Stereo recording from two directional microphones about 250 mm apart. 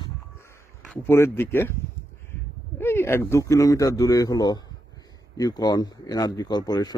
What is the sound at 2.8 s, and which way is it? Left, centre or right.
Speech, centre.